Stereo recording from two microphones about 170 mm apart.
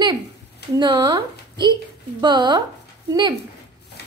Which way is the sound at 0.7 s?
25° right (ahead or behind).